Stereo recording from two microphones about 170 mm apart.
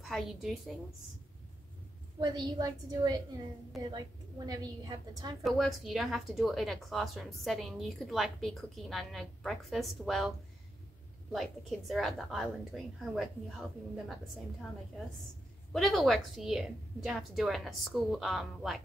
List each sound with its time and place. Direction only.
0.0 s a woman's voice: centre (ahead or behind)
2.1 s a woman's voice: 25° right (ahead or behind)
4.5 s a woman's voice: 25° right (ahead or behind)
5.4 s a woman's voice: centre (ahead or behind)
11.3 s a woman's voice: centre (ahead or behind)
15.7 s a woman's voice: centre (ahead or behind)